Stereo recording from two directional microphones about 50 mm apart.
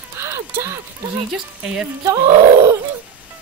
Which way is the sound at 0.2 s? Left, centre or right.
Right.